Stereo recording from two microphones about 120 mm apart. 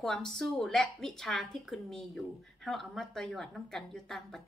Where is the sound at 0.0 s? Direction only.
5° left (ahead or behind).